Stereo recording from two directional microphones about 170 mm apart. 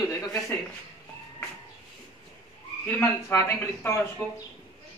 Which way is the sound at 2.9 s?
15° left (ahead or behind).